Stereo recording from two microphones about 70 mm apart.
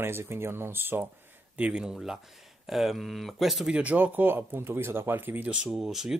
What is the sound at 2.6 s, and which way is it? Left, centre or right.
Speech, centre.